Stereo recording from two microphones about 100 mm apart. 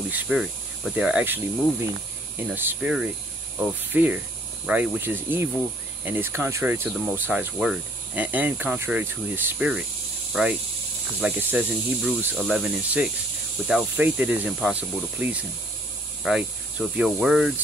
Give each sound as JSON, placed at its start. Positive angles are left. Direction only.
{"t": 0.1, "sound": "speech", "side_deg": -5}
{"t": 7.5, "sound": "speech", "side_deg": -10}